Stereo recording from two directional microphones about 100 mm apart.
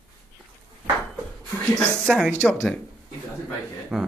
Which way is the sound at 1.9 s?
5° right (ahead or behind).